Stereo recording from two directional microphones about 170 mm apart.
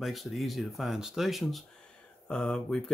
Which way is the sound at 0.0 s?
Centre (ahead or behind).